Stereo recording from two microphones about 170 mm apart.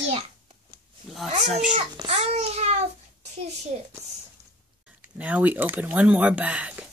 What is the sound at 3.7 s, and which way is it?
Speech, 45° right (ahead or behind).